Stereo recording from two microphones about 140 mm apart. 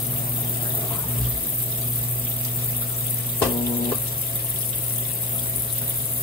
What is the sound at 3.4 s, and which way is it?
Frying, 35° left (ahead or behind).